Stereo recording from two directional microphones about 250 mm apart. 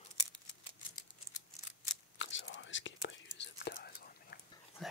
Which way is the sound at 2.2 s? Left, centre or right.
Left.